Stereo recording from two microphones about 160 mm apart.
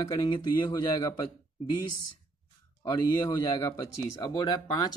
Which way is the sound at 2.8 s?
20° left (ahead or behind).